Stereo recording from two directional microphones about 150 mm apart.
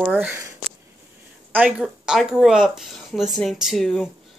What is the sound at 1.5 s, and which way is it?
A woman's voice, 5° right (ahead or behind).